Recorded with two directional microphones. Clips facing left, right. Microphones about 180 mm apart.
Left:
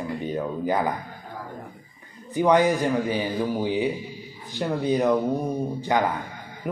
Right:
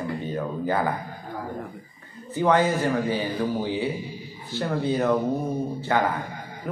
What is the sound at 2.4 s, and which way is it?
Speech, 15° left (ahead or behind).